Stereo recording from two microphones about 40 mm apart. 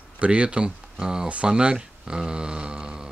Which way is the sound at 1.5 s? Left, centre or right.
Right.